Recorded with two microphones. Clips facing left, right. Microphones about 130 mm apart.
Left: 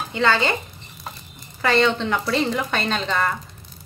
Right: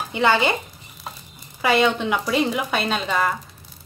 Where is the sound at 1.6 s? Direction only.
10° right (ahead or behind).